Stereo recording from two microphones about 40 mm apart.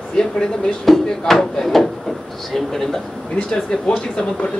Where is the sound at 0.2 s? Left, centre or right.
Centre.